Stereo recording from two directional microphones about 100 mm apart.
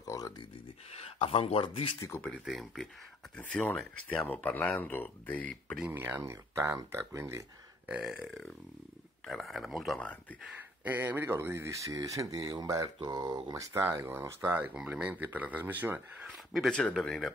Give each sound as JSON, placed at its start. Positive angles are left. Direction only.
{"t": 0.0, "sound": "a sound", "side_deg": 35}
{"t": 0.9, "sound": "speech", "side_deg": 80}
{"t": 1.6, "sound": "speech", "side_deg": 60}
{"t": 2.1, "sound": "speech", "side_deg": 10}
{"t": 2.4, "sound": "speech", "side_deg": 0}
{"t": 3.3, "sound": "speech", "side_deg": 15}
{"t": 5.9, "sound": "speech", "side_deg": -20}
{"t": 7.9, "sound": "speech", "side_deg": -5}
{"t": 9.3, "sound": "speech", "side_deg": 0}
{"t": 10.8, "sound": "speech", "side_deg": -15}
{"t": 12.8, "sound": "speech", "side_deg": -50}
{"t": 13.3, "sound": "speech", "side_deg": -35}
{"t": 13.8, "sound": "speech", "side_deg": -25}
{"t": 16.5, "sound": "speech", "side_deg": 0}